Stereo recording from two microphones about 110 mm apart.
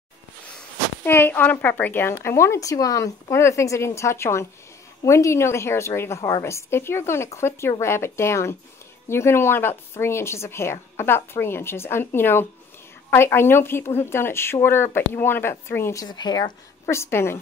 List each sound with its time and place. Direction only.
1.0 s a woman's voice: 20° left (ahead or behind)
16.1 s speech: 40° left (ahead or behind)
16.8 s a woman's voice: 25° left (ahead or behind)